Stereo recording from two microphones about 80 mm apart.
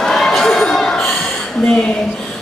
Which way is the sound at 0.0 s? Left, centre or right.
Centre.